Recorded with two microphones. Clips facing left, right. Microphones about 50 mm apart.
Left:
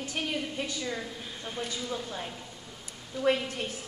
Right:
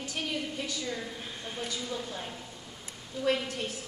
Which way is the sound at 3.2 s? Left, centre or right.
Left.